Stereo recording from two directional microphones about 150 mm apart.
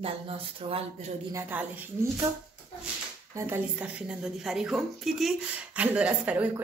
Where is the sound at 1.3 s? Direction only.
10° right (ahead or behind).